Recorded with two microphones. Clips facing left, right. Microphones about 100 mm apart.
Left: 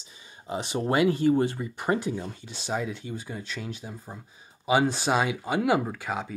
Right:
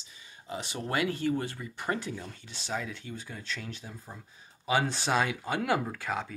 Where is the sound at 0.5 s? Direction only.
20° left (ahead or behind).